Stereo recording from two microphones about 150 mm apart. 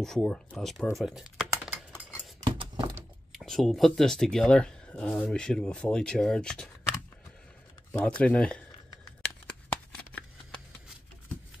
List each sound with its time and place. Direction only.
0.0 s speech: centre (ahead or behind)
1.6 s typing: 10° right (ahead or behind)
2.4 s a sound: 30° right (ahead or behind)
3.3 s speech: centre (ahead or behind)
7.9 s speech: 10° left (ahead or behind)